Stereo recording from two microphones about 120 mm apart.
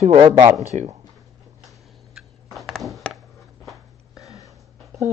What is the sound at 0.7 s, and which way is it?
Speech, 70° right (ahead or behind).